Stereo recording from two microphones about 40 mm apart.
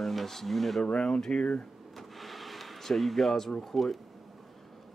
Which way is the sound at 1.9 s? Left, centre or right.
Centre.